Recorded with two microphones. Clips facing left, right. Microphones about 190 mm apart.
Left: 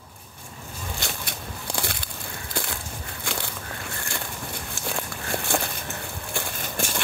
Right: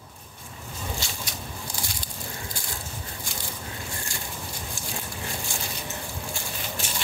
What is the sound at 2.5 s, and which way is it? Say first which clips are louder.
Crushing: left 9 dB; 65° left (ahead or behind).